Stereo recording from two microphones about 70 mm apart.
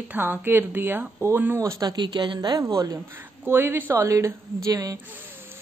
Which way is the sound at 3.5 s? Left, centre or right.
Right.